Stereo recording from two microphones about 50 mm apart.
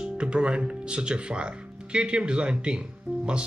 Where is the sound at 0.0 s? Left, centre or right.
Centre.